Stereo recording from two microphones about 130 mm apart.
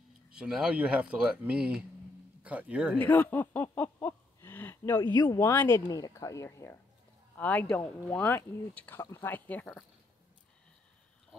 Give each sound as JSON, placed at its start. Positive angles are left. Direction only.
{"t": 0.3, "sound": "speech", "side_deg": -5}
{"t": 3.0, "sound": "speech", "side_deg": 15}
{"t": 5.1, "sound": "speech", "side_deg": 25}